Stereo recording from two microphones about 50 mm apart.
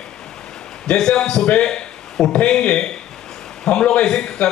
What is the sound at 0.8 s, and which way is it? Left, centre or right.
Speech, centre.